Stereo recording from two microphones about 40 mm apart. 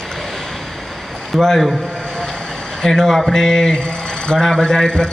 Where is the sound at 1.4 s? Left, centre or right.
Centre.